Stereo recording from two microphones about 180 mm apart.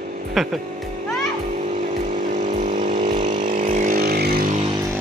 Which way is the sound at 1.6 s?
40° right (ahead or behind).